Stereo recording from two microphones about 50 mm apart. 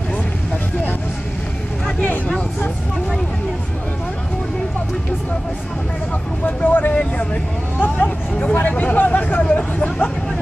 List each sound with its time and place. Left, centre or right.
2.0 s vehicle: left
6.4 s vehicle: left
8.5 s hubbub: left